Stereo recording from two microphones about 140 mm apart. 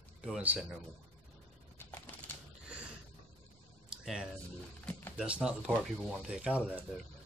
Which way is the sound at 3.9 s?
5° right (ahead or behind).